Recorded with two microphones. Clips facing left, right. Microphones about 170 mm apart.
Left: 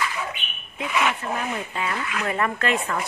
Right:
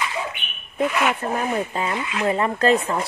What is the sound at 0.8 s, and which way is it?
Speech, centre (ahead or behind).